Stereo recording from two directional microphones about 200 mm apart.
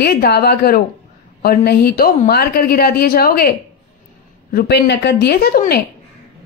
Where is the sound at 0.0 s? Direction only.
50° left (ahead or behind).